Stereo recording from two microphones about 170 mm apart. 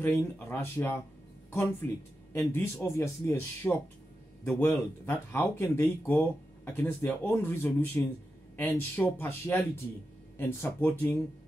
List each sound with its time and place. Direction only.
0.0 s speech: 10° left (ahead or behind)